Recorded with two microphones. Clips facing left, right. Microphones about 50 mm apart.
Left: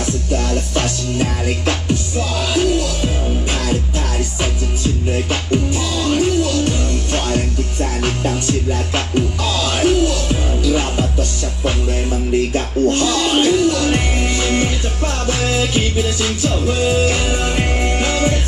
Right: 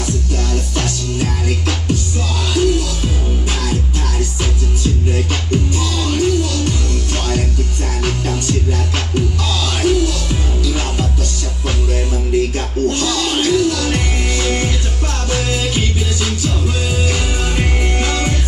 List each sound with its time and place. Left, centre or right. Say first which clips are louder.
0.0 s music: left 2 dB; left
5.3 s music: left 1 dB; left
12.5 s music: left 2 dB; centre